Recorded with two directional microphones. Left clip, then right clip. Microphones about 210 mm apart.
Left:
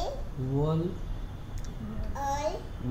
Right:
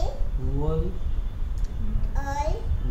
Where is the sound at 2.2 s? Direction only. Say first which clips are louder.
Right 1 dB; 5° right (ahead or behind).